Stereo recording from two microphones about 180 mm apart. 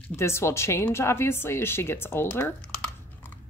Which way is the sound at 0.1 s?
15° left (ahead or behind).